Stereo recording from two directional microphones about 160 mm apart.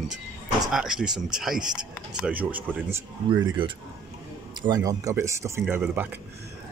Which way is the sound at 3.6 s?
30° right (ahead or behind).